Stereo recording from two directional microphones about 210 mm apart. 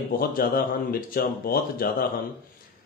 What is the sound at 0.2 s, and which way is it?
A man's voice, 45° left (ahead or behind).